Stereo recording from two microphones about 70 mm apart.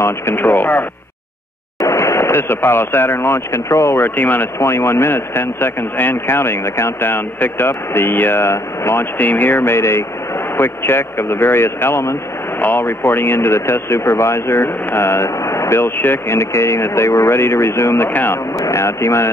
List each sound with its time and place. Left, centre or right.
0.0 s speech: left
1.8 s speech: left
4.2 s speech: left
4.6 s speech: left
9.2 s speech: left
12.5 s speech: left
18.1 s speech: left
18.6 s speech: left